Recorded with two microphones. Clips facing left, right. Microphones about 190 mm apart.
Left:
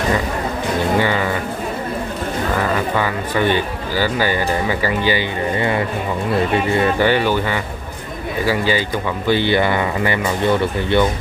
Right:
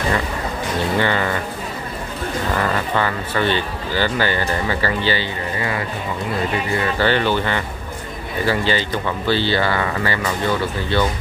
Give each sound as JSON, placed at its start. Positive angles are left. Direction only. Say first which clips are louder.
{"t": 0.9, "sound": "speech", "louder": "even", "side_deg": 10}
{"t": 2.7, "sound": "speech", "louder": "left 2 dB", "side_deg": 10}
{"t": 5.6, "sound": "speech", "louder": "left 5 dB", "side_deg": 25}
{"t": 7.0, "sound": "speech", "louder": "left 2 dB", "side_deg": 10}